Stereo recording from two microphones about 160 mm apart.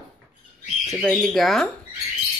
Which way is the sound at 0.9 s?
Centre (ahead or behind).